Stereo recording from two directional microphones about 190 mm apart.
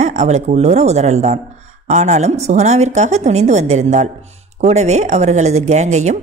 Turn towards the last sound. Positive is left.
turn(degrees=-35)  # may be behind; listen again after turning